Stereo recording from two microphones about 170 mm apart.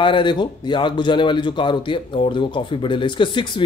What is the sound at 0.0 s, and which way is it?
Speech, 30° left (ahead or behind).